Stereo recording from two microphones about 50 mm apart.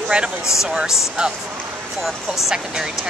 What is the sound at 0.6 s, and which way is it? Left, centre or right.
Speech, centre.